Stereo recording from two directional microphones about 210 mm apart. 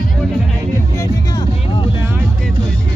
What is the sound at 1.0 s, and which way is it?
Music, 20° left (ahead or behind).